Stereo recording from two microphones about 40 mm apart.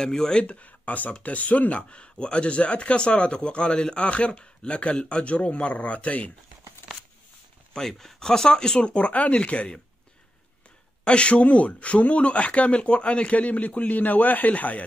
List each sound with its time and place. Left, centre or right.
0.0 s speech: centre
0.4 s speech: left
7.7 s speech: centre; by 9.8 s left
11.1 s speech: left